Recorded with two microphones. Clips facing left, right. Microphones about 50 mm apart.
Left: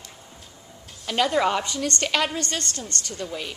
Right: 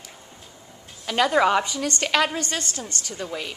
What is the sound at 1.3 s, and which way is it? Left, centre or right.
Speech, right.